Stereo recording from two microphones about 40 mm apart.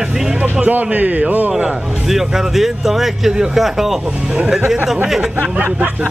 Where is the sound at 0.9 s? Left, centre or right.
Right.